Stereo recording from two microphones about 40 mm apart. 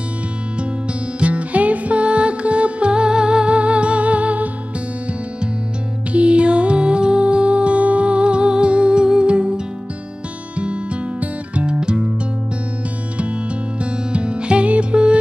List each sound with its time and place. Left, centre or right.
1.2 s music: right
6.1 s music: right
10.6 s music: right
11.7 s music: centre
14.1 s music: right